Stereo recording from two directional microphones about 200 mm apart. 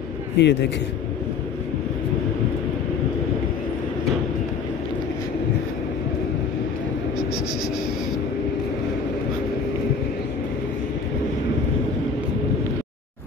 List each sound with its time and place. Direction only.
0.4 s a man's voice: 60° left (ahead or behind)